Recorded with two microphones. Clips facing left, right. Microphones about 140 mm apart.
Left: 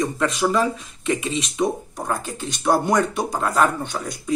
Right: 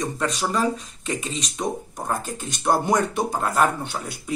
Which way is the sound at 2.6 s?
Centre (ahead or behind).